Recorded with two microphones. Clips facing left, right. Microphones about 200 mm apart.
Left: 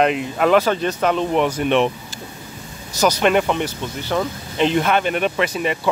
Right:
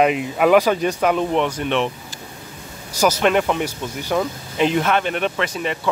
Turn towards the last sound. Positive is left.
turn(degrees=5)  # may be behind; listen again after turning